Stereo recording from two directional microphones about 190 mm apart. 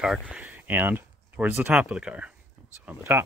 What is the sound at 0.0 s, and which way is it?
Speech, centre (ahead or behind).